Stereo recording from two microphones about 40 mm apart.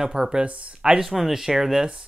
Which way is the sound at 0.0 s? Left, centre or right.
Centre.